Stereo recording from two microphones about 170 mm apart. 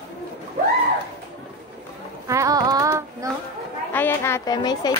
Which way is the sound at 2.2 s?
20° right (ahead or behind).